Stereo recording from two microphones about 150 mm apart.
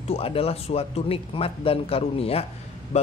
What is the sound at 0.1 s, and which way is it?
A man's voice, 40° left (ahead or behind).